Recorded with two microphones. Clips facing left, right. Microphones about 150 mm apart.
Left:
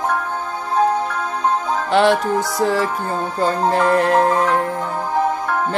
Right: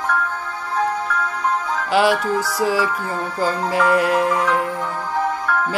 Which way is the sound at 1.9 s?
5° right (ahead or behind).